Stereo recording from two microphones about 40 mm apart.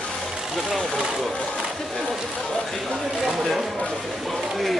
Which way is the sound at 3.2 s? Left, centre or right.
Centre.